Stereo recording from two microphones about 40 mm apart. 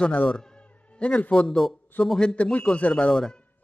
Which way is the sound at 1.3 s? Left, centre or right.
Centre.